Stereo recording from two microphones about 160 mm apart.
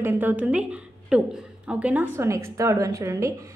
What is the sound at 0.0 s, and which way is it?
A woman's voice, 10° right (ahead or behind).